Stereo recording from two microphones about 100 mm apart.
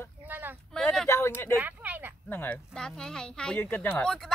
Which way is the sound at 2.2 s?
20° left (ahead or behind).